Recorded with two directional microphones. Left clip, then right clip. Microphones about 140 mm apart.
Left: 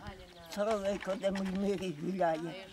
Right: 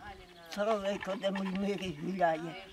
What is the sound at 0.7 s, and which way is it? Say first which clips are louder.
Speech: even; 5° left (ahead or behind).